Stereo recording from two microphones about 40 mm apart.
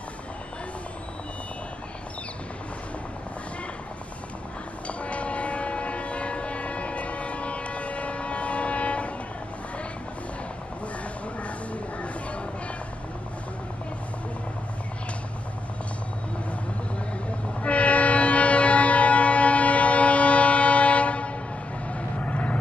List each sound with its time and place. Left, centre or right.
4.8 s train: left
11.4 s a sound: left
17.6 s train: left
21.9 s vehicle: left